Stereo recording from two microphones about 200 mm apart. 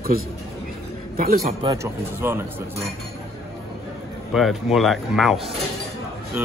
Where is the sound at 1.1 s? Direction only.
45° right (ahead or behind).